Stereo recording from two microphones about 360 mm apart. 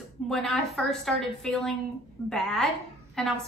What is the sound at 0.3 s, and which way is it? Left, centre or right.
A woman's voice, centre.